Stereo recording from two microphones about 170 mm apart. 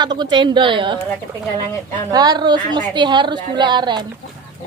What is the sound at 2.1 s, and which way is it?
A woman's voice, 25° right (ahead or behind).